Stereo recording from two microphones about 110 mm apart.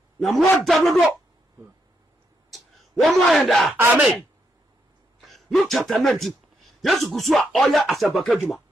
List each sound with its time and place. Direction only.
0.2 s speech: centre (ahead or behind)
2.5 s speech: centre (ahead or behind)
3.7 s speech: 20° right (ahead or behind)
5.2 s speech: centre (ahead or behind)